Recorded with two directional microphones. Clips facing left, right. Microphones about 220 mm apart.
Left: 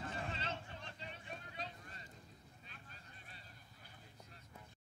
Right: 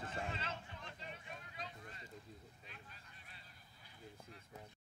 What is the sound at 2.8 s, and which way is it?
Vehicle, 40° left (ahead or behind).